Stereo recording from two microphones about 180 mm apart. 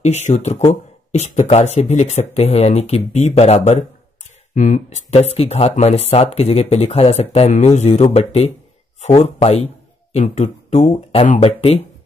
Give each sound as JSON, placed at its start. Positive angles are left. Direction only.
{"t": 0.0, "sound": "speech", "side_deg": 40}